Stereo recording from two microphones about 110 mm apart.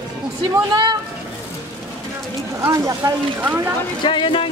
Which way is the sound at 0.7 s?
45° right (ahead or behind).